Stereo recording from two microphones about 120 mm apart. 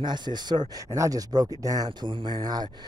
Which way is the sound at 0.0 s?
40° right (ahead or behind).